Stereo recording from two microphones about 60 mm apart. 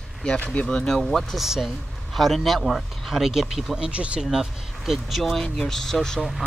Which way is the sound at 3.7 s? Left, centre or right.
Centre.